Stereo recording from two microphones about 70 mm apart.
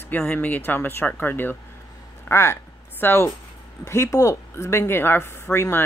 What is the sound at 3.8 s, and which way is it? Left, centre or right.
A woman's voice, left.